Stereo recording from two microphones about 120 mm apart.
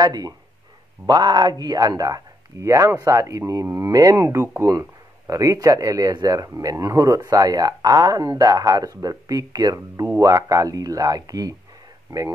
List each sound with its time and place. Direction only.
0.0 s speech: 30° right (ahead or behind)